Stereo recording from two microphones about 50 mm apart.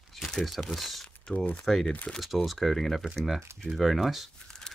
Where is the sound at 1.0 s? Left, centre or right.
Left.